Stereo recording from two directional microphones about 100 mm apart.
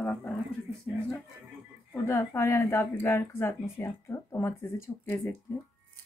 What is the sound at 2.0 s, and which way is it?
Speech, 20° left (ahead or behind).